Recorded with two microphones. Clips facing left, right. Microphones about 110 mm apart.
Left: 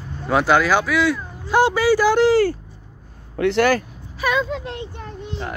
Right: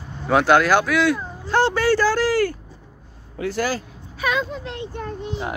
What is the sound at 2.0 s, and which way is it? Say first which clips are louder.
Speech: left 4 dB; 20° left (ahead or behind).